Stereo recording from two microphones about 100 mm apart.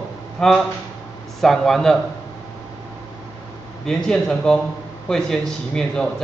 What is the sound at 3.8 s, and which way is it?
Speech, 5° left (ahead or behind).